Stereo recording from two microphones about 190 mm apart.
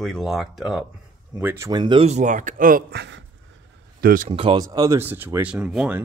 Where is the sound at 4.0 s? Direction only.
50° right (ahead or behind).